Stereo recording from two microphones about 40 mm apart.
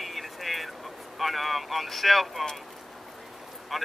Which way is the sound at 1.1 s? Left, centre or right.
Centre.